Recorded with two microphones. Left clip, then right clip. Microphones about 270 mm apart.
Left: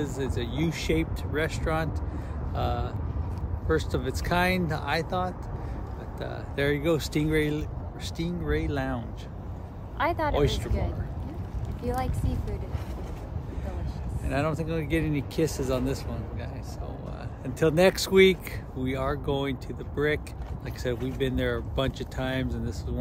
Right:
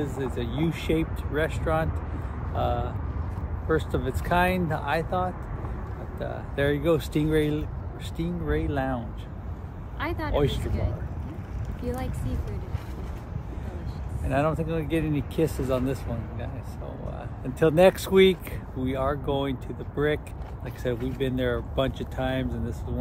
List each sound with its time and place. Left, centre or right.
0.4 s speech: centre
9.9 s speech: left
10.3 s speech: centre
14.2 s speech: centre
17.6 s speech: centre